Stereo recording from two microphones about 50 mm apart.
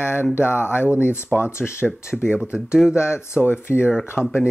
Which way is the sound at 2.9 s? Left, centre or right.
Left.